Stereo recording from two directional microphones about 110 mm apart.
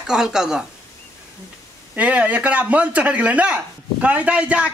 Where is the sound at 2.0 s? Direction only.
10° right (ahead or behind).